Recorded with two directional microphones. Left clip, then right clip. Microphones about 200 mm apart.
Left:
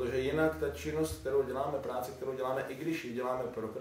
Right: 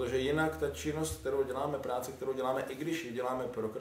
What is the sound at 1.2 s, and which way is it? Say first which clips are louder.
A man's voice: right 1 dB; 60° right (ahead or behind).